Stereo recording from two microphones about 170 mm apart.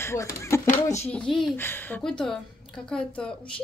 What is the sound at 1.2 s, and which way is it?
Speech, centre (ahead or behind).